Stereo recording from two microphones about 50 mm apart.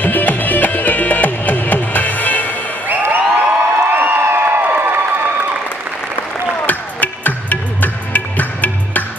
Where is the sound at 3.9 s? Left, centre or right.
Right.